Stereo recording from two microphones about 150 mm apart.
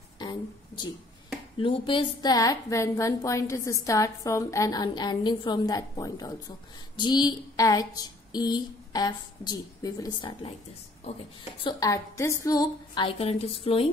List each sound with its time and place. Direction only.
0.2 s a sound: 30° left (ahead or behind)
1.6 s a woman's voice: 35° left (ahead or behind)
11.6 s a woman's voice: 25° left (ahead or behind); by 13.8 s 40° left (ahead or behind)